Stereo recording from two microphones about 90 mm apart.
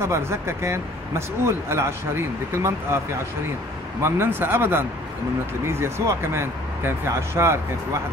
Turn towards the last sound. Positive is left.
turn(degrees=-30)  # may be behind; listen again after turning